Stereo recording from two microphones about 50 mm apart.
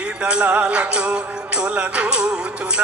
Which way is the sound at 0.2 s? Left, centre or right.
Right.